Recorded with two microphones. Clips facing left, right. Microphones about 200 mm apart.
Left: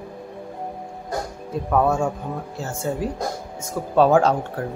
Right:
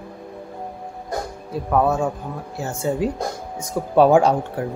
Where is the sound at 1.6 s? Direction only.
5° right (ahead or behind).